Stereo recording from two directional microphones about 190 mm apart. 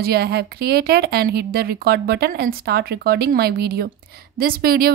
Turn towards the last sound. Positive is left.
turn(degrees=-50)  # may be behind; listen again after turning